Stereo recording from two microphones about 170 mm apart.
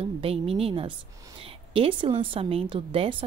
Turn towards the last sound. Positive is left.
turn(degrees=-30)  # may be behind; listen again after turning